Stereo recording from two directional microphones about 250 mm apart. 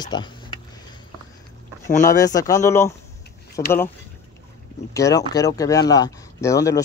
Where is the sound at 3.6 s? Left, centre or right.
Left.